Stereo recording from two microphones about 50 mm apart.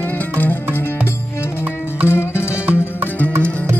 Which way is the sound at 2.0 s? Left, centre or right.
Left.